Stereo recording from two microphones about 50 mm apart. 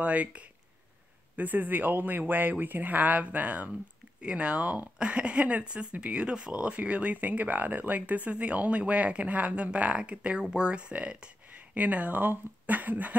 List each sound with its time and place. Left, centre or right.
0.0 s speech: right